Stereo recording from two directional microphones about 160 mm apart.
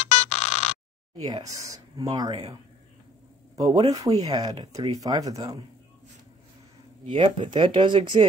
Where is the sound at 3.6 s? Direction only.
25° right (ahead or behind).